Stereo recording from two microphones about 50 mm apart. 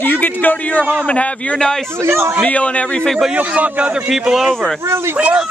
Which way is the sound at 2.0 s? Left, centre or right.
Right.